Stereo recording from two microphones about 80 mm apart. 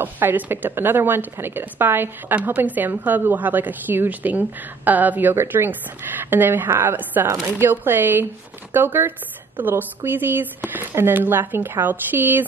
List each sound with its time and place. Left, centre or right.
0.0 s speech: right